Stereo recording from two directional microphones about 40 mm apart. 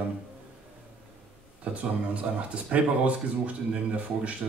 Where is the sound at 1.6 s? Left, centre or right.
Right.